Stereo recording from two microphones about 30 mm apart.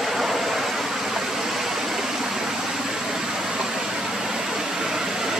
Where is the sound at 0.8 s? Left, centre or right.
Centre.